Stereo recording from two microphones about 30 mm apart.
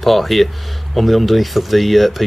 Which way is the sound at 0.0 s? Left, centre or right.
Centre.